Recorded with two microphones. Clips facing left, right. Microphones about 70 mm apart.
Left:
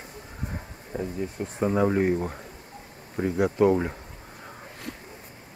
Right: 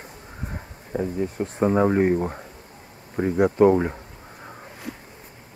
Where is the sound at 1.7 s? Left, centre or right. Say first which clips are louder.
Right 3 dB; centre.